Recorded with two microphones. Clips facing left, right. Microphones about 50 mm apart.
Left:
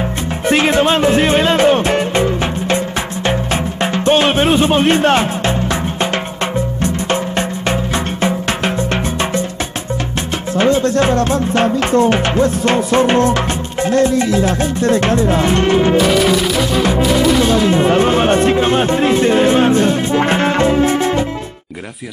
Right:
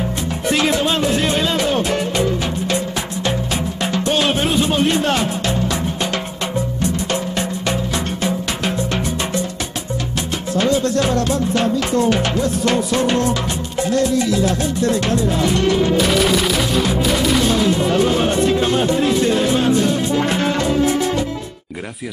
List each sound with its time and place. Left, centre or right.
0.5 s music: left
10.5 s music: left
16.0 s music: centre
17.6 s speech: left